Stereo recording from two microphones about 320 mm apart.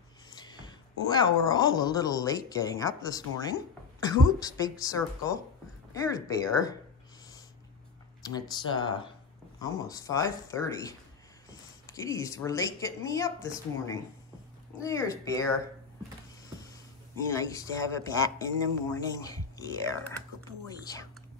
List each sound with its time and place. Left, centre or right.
0.3 s a sound: centre
1.0 s speech: centre
8.2 s speech: centre
17.3 s speech: centre